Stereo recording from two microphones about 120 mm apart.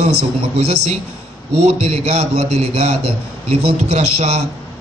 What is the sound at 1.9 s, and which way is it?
A man's voice, 60° right (ahead or behind).